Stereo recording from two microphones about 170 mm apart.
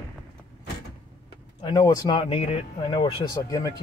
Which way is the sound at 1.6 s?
20° left (ahead or behind).